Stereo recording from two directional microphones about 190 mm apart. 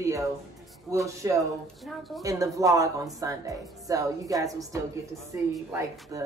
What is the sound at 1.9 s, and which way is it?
Speech, centre (ahead or behind).